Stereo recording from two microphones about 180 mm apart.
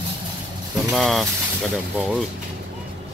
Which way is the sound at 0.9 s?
Centre (ahead or behind).